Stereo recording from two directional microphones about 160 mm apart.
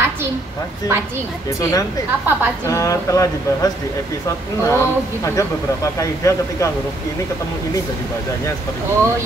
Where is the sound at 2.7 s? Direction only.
20° left (ahead or behind).